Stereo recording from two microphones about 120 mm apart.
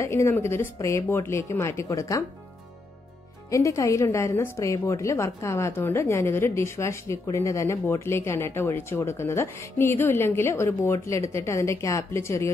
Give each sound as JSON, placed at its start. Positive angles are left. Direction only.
{"t": 0.0, "sound": "a woman's voice", "side_deg": 20}
{"t": 3.4, "sound": "a woman's voice", "side_deg": 25}